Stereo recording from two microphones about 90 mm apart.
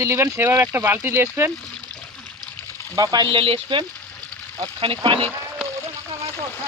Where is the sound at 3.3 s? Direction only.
75° right (ahead or behind).